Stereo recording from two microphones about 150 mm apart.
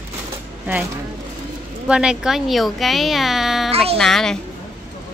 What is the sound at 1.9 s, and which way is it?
Speech, 5° right (ahead or behind).